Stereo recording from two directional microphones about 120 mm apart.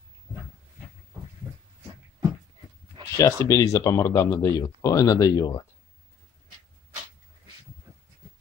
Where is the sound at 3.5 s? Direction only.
25° left (ahead or behind).